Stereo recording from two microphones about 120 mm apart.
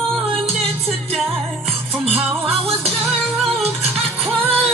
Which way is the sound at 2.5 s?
55° right (ahead or behind).